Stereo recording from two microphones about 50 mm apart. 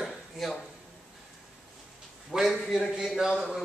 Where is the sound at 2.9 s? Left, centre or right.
Centre.